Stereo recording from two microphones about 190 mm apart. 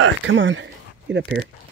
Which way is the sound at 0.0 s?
80° right.